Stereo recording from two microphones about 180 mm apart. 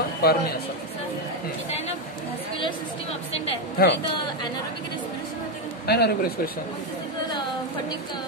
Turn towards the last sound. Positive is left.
turn(degrees=65)  # may be behind; listen again after turning